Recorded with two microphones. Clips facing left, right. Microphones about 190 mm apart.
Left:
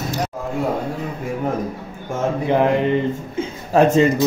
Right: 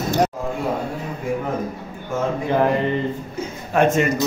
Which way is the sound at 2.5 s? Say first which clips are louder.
Left 3 dB; 20° left (ahead or behind).